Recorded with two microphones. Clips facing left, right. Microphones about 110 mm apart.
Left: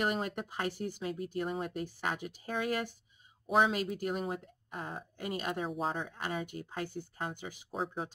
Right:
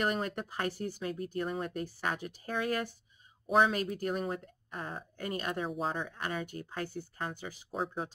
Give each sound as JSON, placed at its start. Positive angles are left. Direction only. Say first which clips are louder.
{"t": 0.0, "sound": "speech", "louder": "right 1 dB", "side_deg": 15}
{"t": 3.9, "sound": "speech", "louder": "right 1 dB", "side_deg": 15}
{"t": 5.7, "sound": "speech", "louder": "even", "side_deg": 0}
{"t": 6.0, "sound": "speech", "louder": "even", "side_deg": 20}
{"t": 7.7, "sound": "speech", "louder": "right 1 dB", "side_deg": 0}